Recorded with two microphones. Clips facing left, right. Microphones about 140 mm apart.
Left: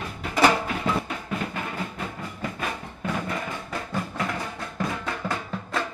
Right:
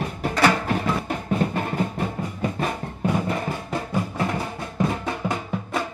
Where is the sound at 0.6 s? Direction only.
40° right (ahead or behind).